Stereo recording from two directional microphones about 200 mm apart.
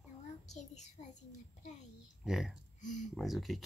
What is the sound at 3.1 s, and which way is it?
Speech, centre (ahead or behind).